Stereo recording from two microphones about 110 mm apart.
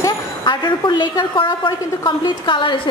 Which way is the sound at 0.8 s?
45° left (ahead or behind).